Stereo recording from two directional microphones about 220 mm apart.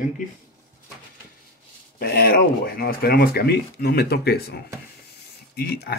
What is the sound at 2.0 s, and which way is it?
Speech, 45° left (ahead or behind).